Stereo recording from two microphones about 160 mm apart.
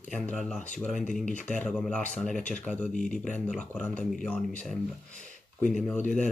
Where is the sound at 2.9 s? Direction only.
50° left (ahead or behind).